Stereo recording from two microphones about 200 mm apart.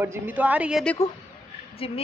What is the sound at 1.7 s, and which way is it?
Speech, 30° left (ahead or behind).